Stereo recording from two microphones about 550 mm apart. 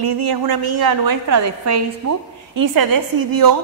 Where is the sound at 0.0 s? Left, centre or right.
Right.